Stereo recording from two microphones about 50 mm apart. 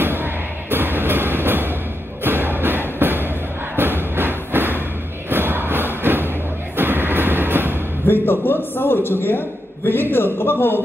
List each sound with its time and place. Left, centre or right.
0.0 s music: right
2.2 s thump: right
3.0 s a sound: right
3.7 s music: right
6.8 s train: right
8.1 s a man's voice: left